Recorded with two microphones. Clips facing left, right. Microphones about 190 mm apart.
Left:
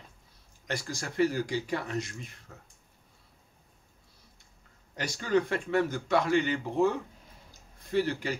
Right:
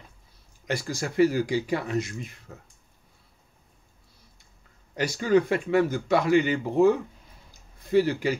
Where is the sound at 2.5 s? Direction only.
20° right (ahead or behind).